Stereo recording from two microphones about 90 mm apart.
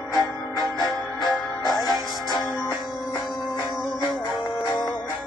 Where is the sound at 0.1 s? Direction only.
50° left (ahead or behind).